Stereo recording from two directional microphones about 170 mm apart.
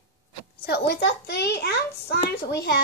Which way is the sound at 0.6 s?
75° left (ahead or behind).